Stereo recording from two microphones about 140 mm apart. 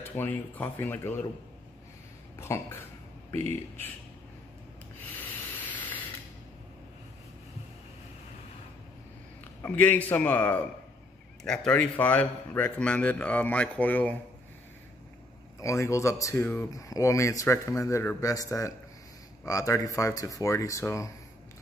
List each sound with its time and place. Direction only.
0.1 s speech: 15° left (ahead or behind)
2.3 s speech: 20° left (ahead or behind)
5.7 s ratchet: 10° left (ahead or behind)
9.6 s speech: 15° left (ahead or behind)
15.6 s speech: 20° left (ahead or behind)